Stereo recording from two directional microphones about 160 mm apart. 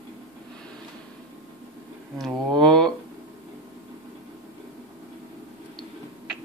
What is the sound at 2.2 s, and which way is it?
Speech, centre (ahead or behind).